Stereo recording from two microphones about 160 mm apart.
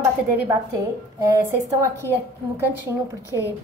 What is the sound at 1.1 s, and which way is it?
Speech, 20° right (ahead or behind).